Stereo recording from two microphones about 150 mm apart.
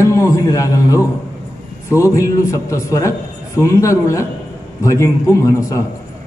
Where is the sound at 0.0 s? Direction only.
20° left (ahead or behind).